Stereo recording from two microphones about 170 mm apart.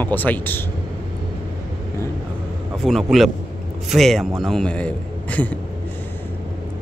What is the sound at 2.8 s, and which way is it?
A man's voice, centre (ahead or behind).